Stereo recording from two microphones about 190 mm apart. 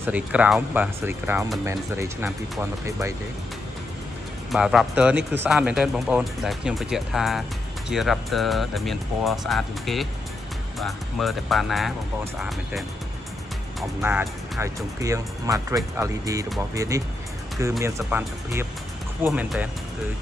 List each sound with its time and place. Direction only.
0.0 s speech: 5° right (ahead or behind)
4.5 s speech: centre (ahead or behind)
14.0 s speech: 10° right (ahead or behind)